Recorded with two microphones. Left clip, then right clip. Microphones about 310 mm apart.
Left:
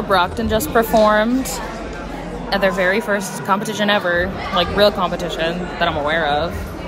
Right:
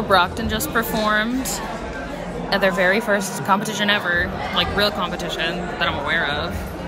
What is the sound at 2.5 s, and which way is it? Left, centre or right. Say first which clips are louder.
Speech: left 1 dB; centre.